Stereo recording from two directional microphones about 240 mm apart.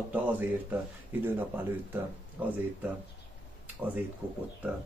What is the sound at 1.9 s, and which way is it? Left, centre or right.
Speech, centre.